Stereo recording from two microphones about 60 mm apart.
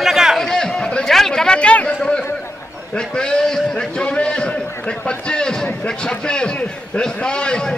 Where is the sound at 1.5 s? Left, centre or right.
Centre.